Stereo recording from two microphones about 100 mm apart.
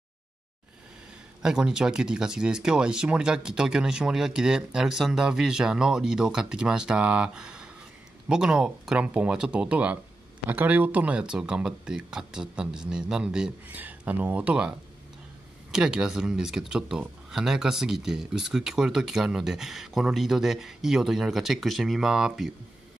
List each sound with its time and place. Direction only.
1.4 s speech: 5° right (ahead or behind)